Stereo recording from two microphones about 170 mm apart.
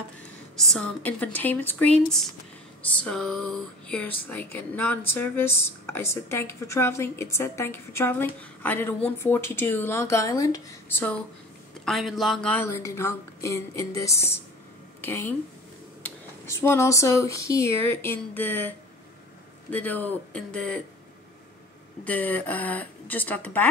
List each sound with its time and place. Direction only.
0.6 s speech: 5° left (ahead or behind)
22.0 s speech: 10° left (ahead or behind)